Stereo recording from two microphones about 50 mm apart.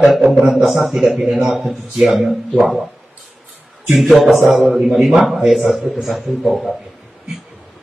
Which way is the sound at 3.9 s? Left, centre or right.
Centre.